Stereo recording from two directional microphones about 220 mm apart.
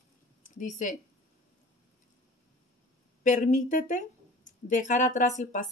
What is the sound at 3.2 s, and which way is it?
Speech, 35° left (ahead or behind).